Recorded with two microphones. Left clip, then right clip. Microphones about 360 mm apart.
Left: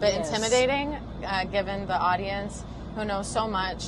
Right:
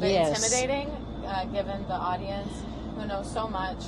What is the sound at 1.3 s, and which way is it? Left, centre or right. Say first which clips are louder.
Speech: left 3 dB; left.